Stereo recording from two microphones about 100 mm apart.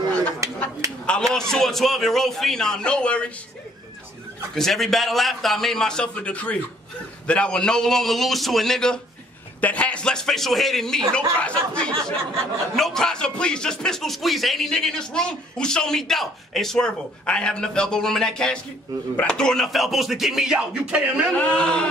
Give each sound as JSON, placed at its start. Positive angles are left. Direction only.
{"t": 0.4, "sound": "a sound", "side_deg": -30}
{"t": 1.0, "sound": "speech", "side_deg": 5}
{"t": 4.6, "sound": "speech", "side_deg": 5}
{"t": 21.4, "sound": "speech", "side_deg": 10}